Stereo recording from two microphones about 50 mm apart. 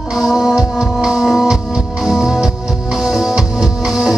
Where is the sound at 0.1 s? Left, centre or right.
Centre.